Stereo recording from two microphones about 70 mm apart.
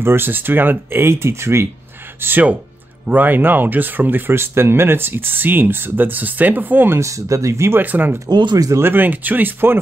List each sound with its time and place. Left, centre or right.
0.0 s speech: right
2.1 s speech: right
7.0 s speech: right
7.8 s speech: right
8.3 s speech: right
8.8 s speech: right